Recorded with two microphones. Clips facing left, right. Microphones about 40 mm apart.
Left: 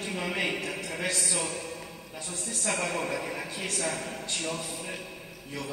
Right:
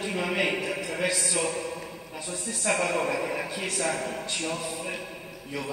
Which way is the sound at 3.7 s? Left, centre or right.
Right.